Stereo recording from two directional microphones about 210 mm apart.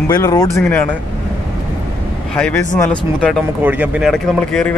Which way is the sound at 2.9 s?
5° left (ahead or behind).